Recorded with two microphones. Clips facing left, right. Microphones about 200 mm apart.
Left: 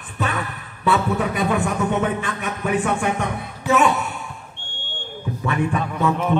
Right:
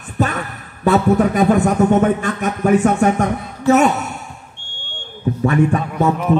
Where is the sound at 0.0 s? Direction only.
45° right (ahead or behind).